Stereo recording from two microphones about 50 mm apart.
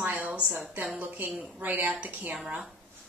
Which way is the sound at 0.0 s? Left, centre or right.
Right.